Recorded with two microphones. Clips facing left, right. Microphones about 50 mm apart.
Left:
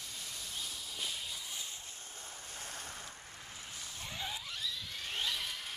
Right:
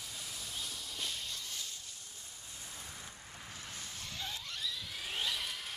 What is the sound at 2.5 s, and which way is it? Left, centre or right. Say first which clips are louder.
Waves: left 3 dB; left.